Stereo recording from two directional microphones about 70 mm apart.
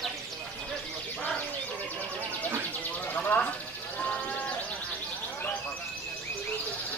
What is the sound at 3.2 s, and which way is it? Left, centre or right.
Speech, left.